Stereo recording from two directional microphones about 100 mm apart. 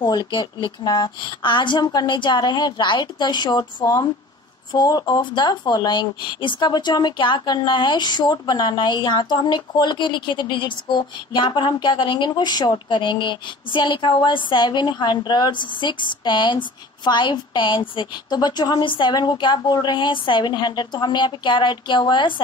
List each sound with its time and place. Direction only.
0.1 s speech: 40° left (ahead or behind)